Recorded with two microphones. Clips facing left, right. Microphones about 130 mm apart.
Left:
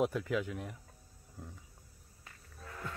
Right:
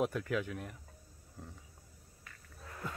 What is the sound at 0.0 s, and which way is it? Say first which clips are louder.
Speech: left 1 dB; 5° left (ahead or behind).